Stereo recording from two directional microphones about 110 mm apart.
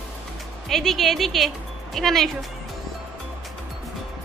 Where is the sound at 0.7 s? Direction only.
Centre (ahead or behind).